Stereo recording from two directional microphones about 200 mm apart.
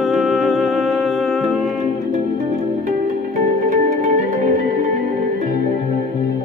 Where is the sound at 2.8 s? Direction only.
40° right (ahead or behind).